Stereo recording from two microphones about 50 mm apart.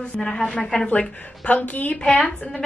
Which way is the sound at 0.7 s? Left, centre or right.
Left.